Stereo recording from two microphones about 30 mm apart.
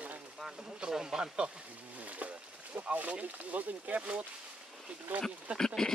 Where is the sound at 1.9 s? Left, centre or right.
Right.